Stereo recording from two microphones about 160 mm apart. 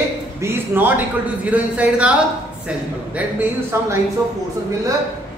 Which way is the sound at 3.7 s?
15° right (ahead or behind).